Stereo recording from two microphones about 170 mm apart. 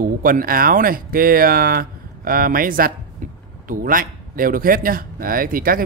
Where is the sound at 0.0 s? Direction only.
55° right (ahead or behind).